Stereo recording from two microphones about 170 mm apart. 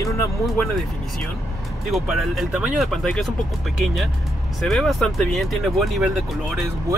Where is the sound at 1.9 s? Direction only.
Centre (ahead or behind).